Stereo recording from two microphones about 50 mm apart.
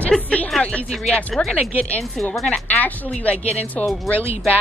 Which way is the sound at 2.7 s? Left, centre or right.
Left.